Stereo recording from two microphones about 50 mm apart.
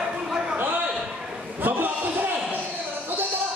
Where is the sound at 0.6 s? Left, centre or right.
Right.